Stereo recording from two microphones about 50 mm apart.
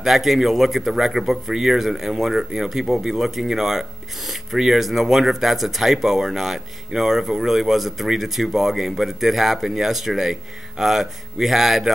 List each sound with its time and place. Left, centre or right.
0.0 s speech: centre